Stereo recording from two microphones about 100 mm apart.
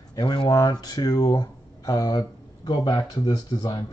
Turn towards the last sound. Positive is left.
turn(degrees=40)  # may be behind; listen again after turning